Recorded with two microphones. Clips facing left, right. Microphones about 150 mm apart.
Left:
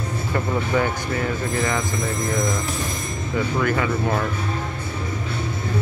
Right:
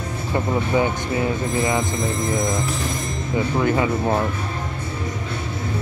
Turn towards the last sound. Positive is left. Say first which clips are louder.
# right 2 dB
turn(degrees=-20)  # may be behind; listen again after turning